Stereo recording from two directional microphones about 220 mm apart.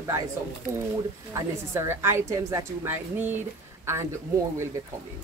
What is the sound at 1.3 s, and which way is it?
A woman's voice, 10° right (ahead or behind).